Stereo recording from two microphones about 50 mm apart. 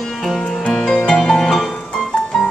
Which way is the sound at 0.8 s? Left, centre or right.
Centre.